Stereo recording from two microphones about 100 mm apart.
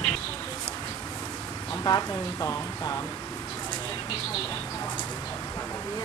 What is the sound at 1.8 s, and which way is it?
Speech, 35° left (ahead or behind).